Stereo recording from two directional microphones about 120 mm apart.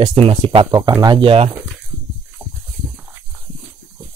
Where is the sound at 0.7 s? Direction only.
35° right (ahead or behind).